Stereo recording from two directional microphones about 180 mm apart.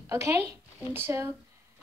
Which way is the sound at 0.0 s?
15° right (ahead or behind).